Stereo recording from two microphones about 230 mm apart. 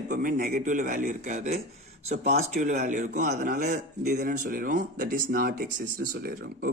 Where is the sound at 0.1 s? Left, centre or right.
Right.